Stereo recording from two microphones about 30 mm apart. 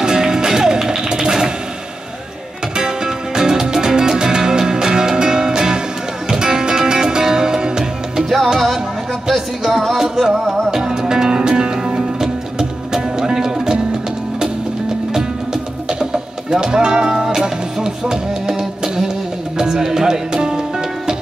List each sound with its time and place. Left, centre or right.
0.0 s music: right
3.3 s music: centre
8.2 s music: centre
9.9 s music: centre
15.1 s music: right